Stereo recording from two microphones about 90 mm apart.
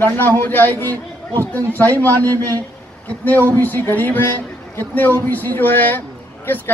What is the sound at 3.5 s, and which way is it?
A man's voice, 25° left (ahead or behind).